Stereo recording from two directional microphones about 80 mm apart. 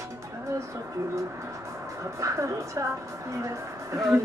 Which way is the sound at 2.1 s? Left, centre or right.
Right.